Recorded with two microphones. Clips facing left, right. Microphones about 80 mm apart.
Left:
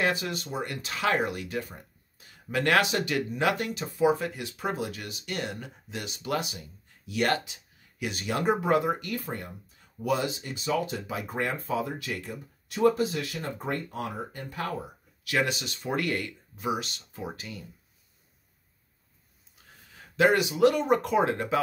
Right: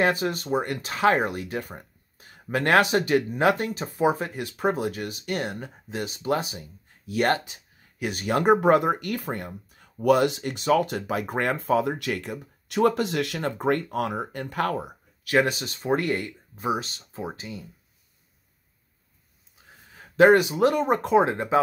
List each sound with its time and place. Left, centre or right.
0.0 s speech: right
1.6 s speech: right
15.2 s speech: right
20.0 s speech: right